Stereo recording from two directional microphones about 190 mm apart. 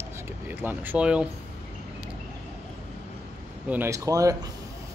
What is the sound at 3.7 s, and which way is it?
Speech, 15° right (ahead or behind).